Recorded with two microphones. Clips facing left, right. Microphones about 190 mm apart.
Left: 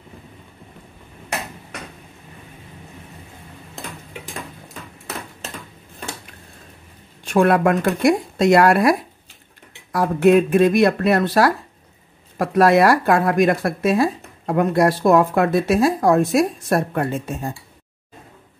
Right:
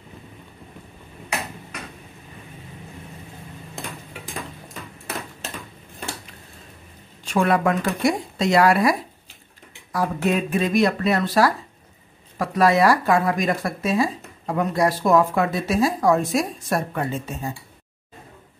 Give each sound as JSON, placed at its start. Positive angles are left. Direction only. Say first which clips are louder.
{"t": 7.2, "sound": "speech", "louder": "left 4 dB", "side_deg": 55}
{"t": 9.9, "sound": "speech", "louder": "left 8 dB", "side_deg": 60}